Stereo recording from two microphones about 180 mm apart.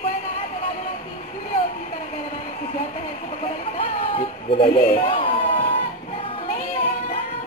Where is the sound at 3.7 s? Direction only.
30° left (ahead or behind).